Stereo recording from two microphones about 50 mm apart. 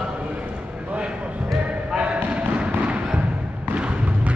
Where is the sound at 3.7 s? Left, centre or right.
Right.